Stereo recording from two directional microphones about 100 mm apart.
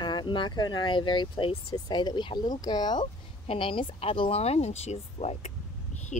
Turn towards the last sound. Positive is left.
turn(degrees=90)